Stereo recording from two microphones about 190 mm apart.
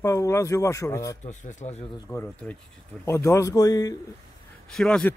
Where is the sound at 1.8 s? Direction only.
15° left (ahead or behind).